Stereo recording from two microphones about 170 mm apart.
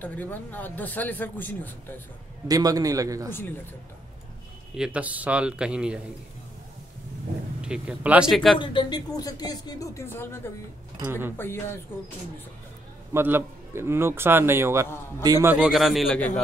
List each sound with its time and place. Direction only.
0.0 s a man's voice: 10° left (ahead or behind)
2.4 s a man's voice: 20° right (ahead or behind)
3.3 s a man's voice: 10° left (ahead or behind)
4.7 s a man's voice: 5° right (ahead or behind)
7.6 s a man's voice: 5° right (ahead or behind)
8.5 s speech: 30° left (ahead or behind)
11.1 s a man's voice: 15° right (ahead or behind)
11.3 s a man's voice: 15° left (ahead or behind)
13.1 s a man's voice: 15° right (ahead or behind)
15.5 s a man's voice: centre (ahead or behind)